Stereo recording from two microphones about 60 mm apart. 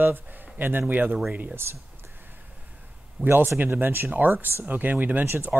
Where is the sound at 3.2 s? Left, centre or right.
Right.